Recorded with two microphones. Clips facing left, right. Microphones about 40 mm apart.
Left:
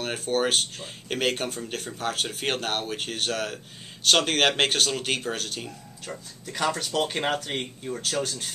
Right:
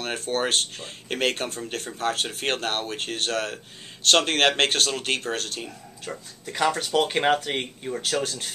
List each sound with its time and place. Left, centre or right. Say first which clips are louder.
0.0 s speech: left 1 dB; centre
6.0 s speech: right 2 dB; centre